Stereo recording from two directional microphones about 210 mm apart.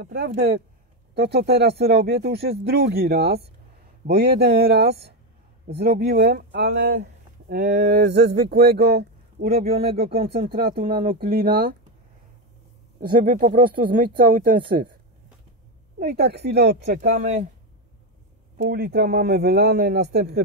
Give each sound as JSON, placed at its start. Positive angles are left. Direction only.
{"t": 0.0, "sound": "speech", "side_deg": -50}
{"t": 7.9, "sound": "a man's voice", "side_deg": -50}
{"t": 10.1, "sound": "speech", "side_deg": -25}
{"t": 10.5, "sound": "speech", "side_deg": -45}
{"t": 13.0, "sound": "speech", "side_deg": -40}
{"t": 16.0, "sound": "speech", "side_deg": -50}
{"t": 18.6, "sound": "speech", "side_deg": -50}